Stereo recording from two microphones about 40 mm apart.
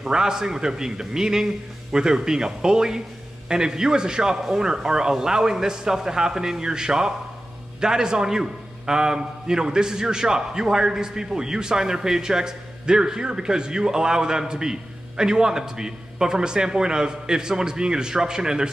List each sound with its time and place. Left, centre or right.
0.1 s a man's voice: centre